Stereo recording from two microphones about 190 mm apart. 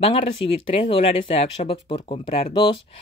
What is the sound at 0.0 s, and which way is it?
Speech, 30° left (ahead or behind).